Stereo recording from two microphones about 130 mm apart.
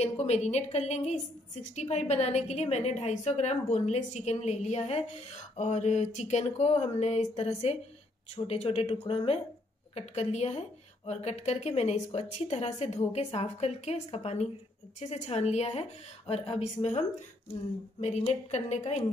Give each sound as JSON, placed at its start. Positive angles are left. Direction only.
{"t": 0.0, "sound": "a woman's voice", "side_deg": 60}
{"t": 18.2, "sound": "a woman's voice", "side_deg": 60}